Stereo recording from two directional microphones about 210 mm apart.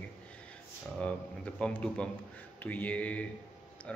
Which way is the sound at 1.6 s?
5° left (ahead or behind).